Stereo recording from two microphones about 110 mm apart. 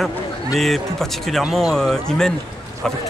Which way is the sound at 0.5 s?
Centre (ahead or behind).